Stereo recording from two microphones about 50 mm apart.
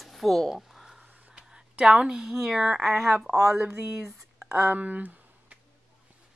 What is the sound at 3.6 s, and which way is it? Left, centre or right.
Speech, right.